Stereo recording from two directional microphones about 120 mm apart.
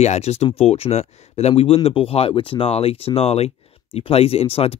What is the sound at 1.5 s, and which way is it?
Speech, 55° left (ahead or behind).